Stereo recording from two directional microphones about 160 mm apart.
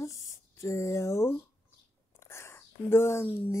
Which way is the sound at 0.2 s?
20° left (ahead or behind).